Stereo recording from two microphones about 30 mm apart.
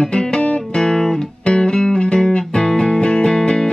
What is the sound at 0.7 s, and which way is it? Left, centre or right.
Guitar, left.